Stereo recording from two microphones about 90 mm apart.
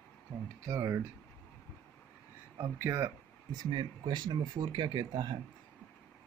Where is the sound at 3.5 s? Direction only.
60° right (ahead or behind).